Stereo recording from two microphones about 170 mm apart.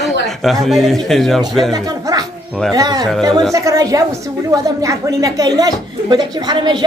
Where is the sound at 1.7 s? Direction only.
20° right (ahead or behind).